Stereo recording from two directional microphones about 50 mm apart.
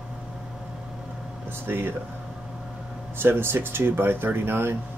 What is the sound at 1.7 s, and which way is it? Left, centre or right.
Speech, right.